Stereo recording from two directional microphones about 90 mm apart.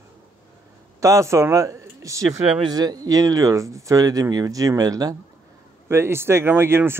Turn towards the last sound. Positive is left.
turn(degrees=-25)  # may be behind; listen again after turning